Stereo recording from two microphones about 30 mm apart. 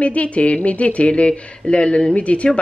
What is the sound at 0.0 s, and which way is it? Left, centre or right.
Speech, left.